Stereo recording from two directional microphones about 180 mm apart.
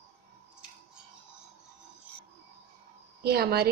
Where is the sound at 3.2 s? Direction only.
60° right (ahead or behind).